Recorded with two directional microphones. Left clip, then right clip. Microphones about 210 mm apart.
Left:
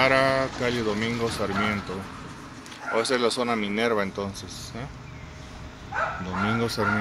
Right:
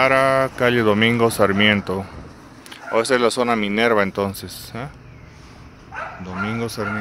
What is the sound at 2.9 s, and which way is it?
Speech, 30° right (ahead or behind).